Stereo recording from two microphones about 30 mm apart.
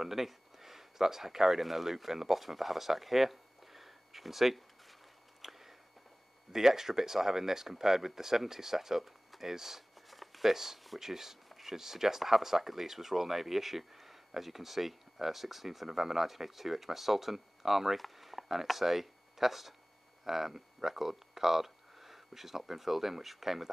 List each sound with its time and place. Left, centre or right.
0.0 s speech: centre
5.4 s a sound: centre
6.5 s speech: centre
10.0 s shuffling cards: centre
10.5 s speech: centre